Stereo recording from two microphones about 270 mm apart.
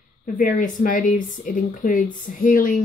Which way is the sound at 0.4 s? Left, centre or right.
Left.